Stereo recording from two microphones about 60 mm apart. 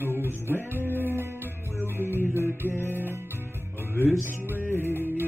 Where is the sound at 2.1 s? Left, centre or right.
Left.